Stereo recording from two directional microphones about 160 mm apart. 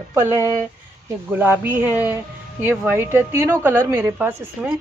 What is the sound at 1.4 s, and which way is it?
A woman's voice, 15° right (ahead or behind).